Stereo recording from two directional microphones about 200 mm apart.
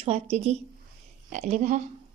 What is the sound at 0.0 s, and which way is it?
A woman's voice, 30° right (ahead or behind).